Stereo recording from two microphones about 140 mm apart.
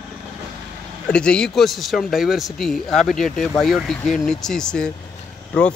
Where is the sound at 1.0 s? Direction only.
5° left (ahead or behind).